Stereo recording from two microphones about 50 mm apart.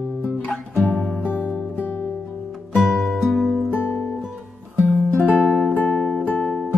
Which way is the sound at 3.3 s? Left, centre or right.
Centre.